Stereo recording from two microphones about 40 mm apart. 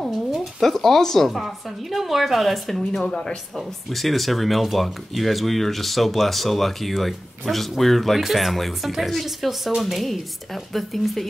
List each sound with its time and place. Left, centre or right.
0.1 s a sound: centre
1.3 s speech: centre
3.1 s speech: centre
3.5 s speech: centre